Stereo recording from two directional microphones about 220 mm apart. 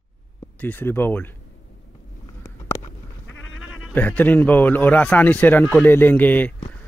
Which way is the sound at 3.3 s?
65° left (ahead or behind).